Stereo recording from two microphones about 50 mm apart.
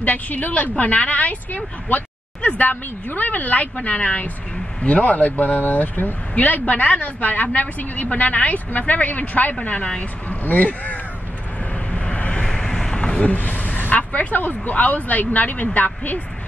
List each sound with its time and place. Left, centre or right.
0.0 s speech: left
11.9 s vehicle: left
12.6 s a sound: centre
13.3 s speech: left